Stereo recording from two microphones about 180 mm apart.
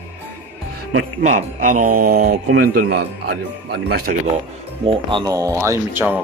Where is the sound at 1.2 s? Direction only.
45° right (ahead or behind).